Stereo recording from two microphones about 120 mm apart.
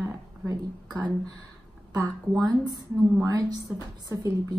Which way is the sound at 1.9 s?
30° right (ahead or behind).